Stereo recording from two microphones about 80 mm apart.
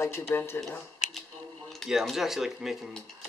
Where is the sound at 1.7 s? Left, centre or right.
Centre.